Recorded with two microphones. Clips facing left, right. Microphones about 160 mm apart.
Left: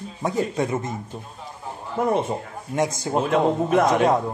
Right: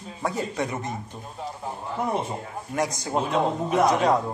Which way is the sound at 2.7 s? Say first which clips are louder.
Left 3 dB; 25° left (ahead or behind).